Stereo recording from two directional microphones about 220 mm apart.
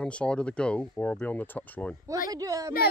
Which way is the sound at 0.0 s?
5° left (ahead or behind).